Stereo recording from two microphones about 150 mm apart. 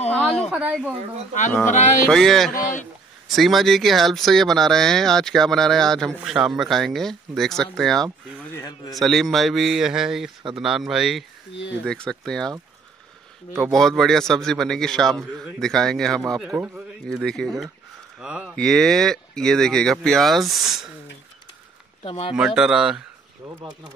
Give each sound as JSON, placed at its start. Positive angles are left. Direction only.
{"t": 0.5, "sound": "speech", "side_deg": -10}
{"t": 1.7, "sound": "music", "side_deg": 55}
{"t": 2.0, "sound": "speech", "side_deg": 0}
{"t": 2.5, "sound": "speech", "side_deg": 60}
{"t": 3.3, "sound": "speech", "side_deg": 0}
{"t": 13.7, "sound": "speech", "side_deg": 5}
{"t": 16.5, "sound": "speech", "side_deg": -10}
{"t": 17.1, "sound": "speech", "side_deg": 5}
{"t": 22.0, "sound": "speech", "side_deg": 40}
{"t": 22.3, "sound": "speech", "side_deg": -5}